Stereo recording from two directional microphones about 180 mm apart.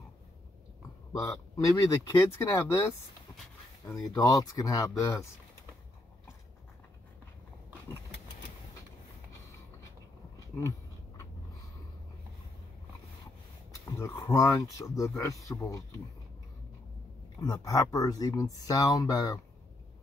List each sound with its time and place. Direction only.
1.6 s speech: 15° left (ahead or behind)
13.9 s speech: 15° left (ahead or behind)
17.4 s speech: 20° left (ahead or behind)